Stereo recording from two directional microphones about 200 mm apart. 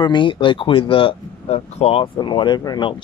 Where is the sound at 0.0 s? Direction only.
25° left (ahead or behind).